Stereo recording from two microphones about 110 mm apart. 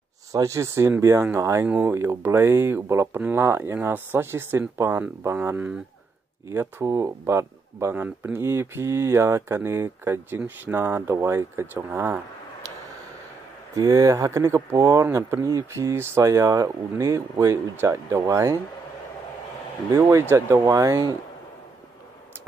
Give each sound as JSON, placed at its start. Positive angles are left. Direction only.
{"t": 0.3, "sound": "speech", "side_deg": -30}
{"t": 13.7, "sound": "speech", "side_deg": -35}
{"t": 15.0, "sound": "speech", "side_deg": -25}
{"t": 20.0, "sound": "speech", "side_deg": -25}